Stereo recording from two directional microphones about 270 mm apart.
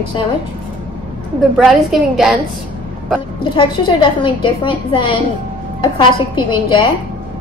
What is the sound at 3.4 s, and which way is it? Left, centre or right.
A woman's voice, centre.